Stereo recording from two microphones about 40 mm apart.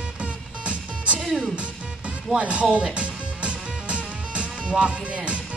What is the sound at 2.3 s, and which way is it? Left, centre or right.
Speech, right.